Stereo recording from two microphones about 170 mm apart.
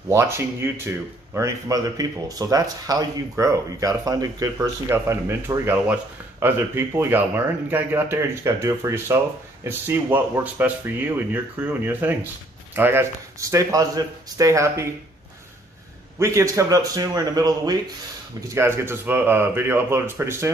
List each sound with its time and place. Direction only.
0.1 s speech: 15° right (ahead or behind)
16.2 s speech: 20° right (ahead or behind)